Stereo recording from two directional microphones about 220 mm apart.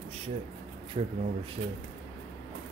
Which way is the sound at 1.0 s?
30° right (ahead or behind).